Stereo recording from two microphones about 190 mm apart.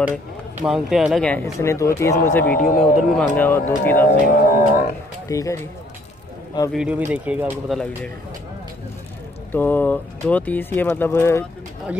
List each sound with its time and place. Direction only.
0.6 s speech: 5° right (ahead or behind)
2.6 s music: 45° left (ahead or behind)
3.0 s speech: 5° left (ahead or behind)
4.0 s music: 45° left (ahead or behind)
5.3 s speech: 15° left (ahead or behind)
6.7 s speech: 5° right (ahead or behind)
7.7 s speech: 5° left (ahead or behind)
9.5 s speech: 10° left (ahead or behind)